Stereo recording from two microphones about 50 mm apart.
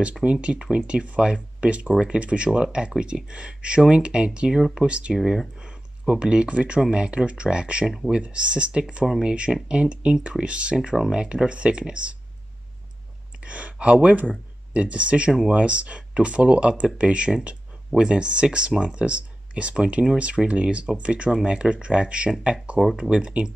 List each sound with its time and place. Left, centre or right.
0.2 s speech: right
5.1 s speech: centre
5.6 s a sound: centre
6.8 s speech: right
9.0 s speech: centre
9.3 s speech: centre
13.4 s speech: right